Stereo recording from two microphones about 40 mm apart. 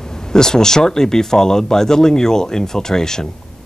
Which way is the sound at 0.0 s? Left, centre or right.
Centre.